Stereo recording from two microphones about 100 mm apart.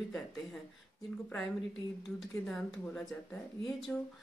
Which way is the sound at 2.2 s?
5° left (ahead or behind).